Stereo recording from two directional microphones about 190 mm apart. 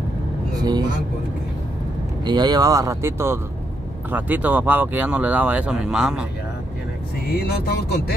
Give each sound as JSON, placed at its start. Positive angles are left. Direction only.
{"t": 0.6, "sound": "speech", "side_deg": -20}
{"t": 2.2, "sound": "speech", "side_deg": -20}
{"t": 7.3, "sound": "speech", "side_deg": 55}